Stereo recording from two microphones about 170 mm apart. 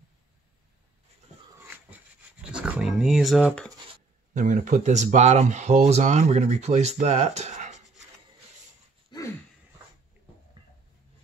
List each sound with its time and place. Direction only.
2.4 s dog: 5° right (ahead or behind)
4.3 s speech: 50° right (ahead or behind)
9.1 s a sound: 25° left (ahead or behind)